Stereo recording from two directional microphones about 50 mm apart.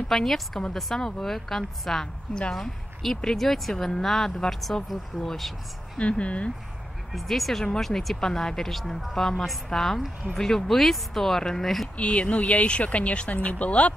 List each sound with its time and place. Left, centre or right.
0.1 s speech: centre
5.9 s speech: left
7.1 s speech: centre
12.0 s speech: left